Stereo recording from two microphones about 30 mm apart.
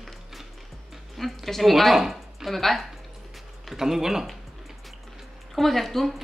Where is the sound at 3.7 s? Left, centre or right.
Centre.